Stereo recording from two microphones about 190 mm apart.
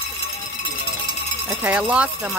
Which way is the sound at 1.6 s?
5° right (ahead or behind).